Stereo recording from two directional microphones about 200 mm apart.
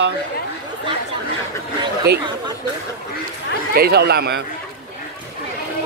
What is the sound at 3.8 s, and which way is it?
Speech, 55° right (ahead or behind).